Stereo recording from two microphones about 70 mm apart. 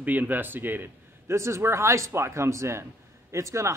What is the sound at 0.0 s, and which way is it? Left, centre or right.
Speech, right.